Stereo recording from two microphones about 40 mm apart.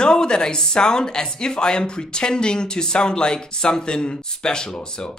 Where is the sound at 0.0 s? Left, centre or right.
Centre.